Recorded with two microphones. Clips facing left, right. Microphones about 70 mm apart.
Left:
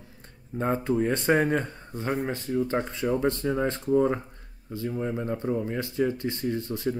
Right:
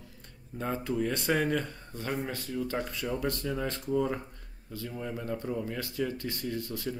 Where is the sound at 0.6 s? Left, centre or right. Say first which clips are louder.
Left 6 dB; left.